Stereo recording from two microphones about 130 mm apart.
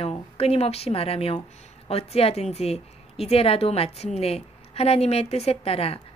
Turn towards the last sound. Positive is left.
turn(degrees=50)  # may be behind; listen again after turning